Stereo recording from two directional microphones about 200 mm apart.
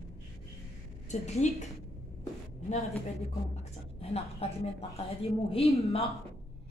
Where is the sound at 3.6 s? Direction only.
30° left (ahead or behind).